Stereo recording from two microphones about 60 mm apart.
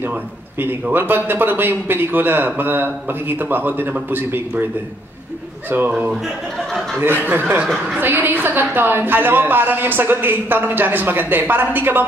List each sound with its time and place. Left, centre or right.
0.9 s a woman's voice: right
5.9 s a man's voice: right
6.2 s a sound: centre
7.0 s a woman's voice: right
7.6 s a woman's voice: centre
8.0 s a woman's voice: right